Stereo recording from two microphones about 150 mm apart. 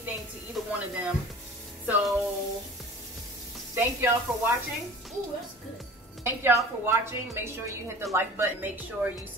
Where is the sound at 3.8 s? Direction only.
15° right (ahead or behind).